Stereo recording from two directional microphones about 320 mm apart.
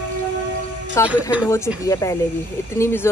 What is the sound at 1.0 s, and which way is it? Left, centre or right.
Speech, centre.